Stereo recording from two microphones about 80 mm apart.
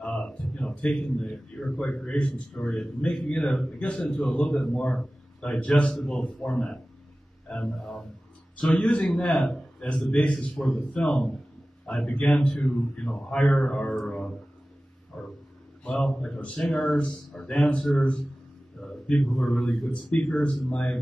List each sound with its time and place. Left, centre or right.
0.0 s a sound: centre
2.0 s a man's voice: centre
8.5 s a man's voice: centre
8.8 s a man's voice: centre
10.5 s a man's voice: centre
15.1 s a sound: centre
15.9 s a man's voice: centre